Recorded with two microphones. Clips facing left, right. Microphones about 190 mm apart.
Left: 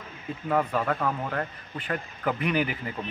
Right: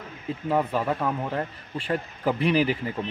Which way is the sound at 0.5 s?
25° right (ahead or behind).